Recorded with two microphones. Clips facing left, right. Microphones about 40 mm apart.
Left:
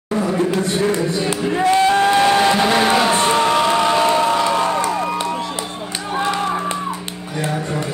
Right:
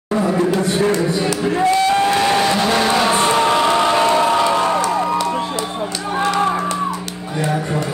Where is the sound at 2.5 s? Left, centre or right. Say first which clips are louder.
Left 1 dB; centre.